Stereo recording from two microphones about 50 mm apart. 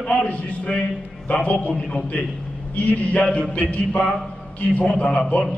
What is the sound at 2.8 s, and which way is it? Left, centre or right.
A man's voice, left.